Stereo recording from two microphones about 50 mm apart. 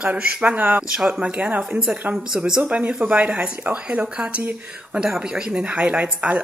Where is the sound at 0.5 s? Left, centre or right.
Right; by 2.6 s centre.